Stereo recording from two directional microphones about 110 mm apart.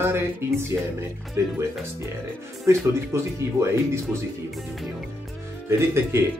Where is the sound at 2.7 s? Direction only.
25° right (ahead or behind).